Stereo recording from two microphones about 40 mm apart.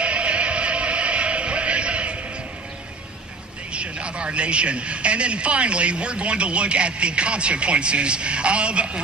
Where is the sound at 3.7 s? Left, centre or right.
Right.